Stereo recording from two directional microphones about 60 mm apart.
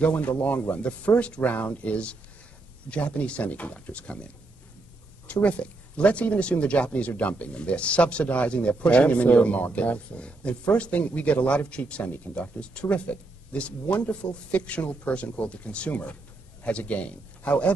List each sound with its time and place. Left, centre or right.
0.0 s speech: left
5.3 s speech: left